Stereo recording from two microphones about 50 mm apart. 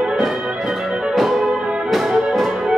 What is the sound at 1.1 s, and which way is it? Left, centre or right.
Music, centre.